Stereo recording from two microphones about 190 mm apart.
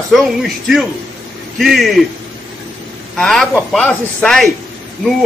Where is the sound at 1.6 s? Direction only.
Centre (ahead or behind).